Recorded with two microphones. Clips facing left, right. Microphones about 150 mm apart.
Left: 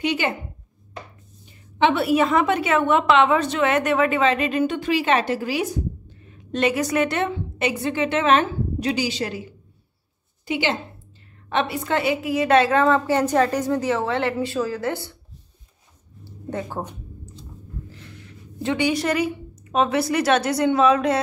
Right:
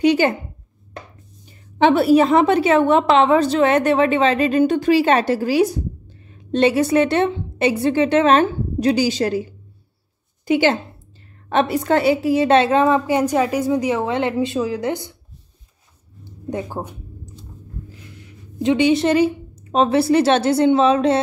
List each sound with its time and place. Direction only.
0.0 s a woman's voice: 40° right (ahead or behind)
1.8 s a woman's voice: 40° right (ahead or behind)
10.4 s a woman's voice: 45° right (ahead or behind); by 15.1 s 20° right (ahead or behind)
16.4 s a woman's voice: 15° right (ahead or behind)
18.6 s speech: 20° right (ahead or behind)